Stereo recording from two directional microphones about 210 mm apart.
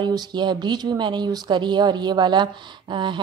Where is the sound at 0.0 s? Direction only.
20° right (ahead or behind).